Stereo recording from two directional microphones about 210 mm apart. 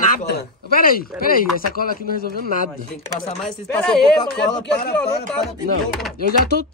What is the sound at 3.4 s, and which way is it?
Speech, 5° left (ahead or behind).